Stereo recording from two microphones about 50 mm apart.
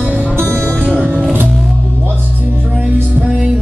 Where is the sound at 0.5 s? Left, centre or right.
Left.